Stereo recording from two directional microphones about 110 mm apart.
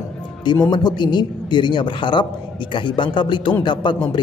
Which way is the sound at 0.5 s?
40° left (ahead or behind).